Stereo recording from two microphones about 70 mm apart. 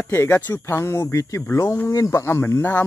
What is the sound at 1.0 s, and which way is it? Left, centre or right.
Speech, left.